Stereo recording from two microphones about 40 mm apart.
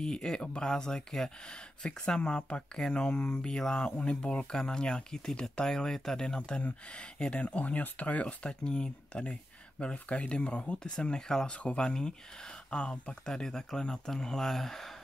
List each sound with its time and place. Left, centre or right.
0.0 s speech: centre; by 8.5 s left
8.5 s speech: left
13.2 s speech: centre